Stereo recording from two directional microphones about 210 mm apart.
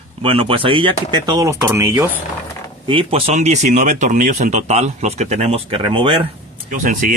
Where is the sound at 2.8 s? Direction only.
25° right (ahead or behind).